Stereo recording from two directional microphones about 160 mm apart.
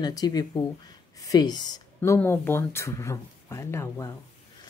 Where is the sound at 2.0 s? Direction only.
15° left (ahead or behind).